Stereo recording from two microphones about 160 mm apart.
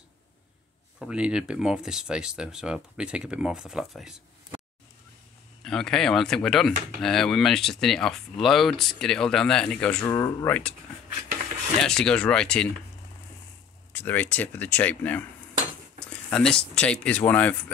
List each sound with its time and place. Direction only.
0.9 s speech: 5° right (ahead or behind)
5.6 s speech: 5° left (ahead or behind)
10.0 s speech: 20° left (ahead or behind)
11.8 s speech: 5° left (ahead or behind)
13.9 s speech: 10° left (ahead or behind)